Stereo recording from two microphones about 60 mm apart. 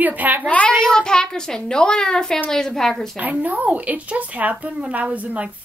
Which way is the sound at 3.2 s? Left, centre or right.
Right.